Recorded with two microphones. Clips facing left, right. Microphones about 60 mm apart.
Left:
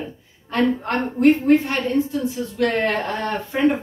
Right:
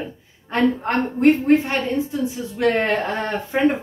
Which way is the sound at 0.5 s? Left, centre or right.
Right.